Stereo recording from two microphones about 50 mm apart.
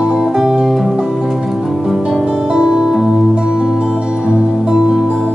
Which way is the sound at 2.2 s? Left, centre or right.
Centre.